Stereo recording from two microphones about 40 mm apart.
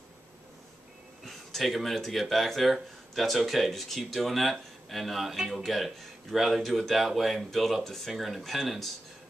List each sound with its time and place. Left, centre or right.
1.2 s speech: centre